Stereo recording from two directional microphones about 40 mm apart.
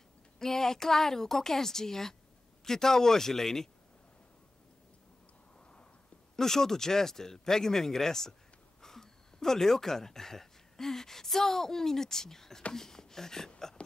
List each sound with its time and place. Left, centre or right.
0.4 s speech: centre
6.3 s speech: centre
13.8 s a sound: left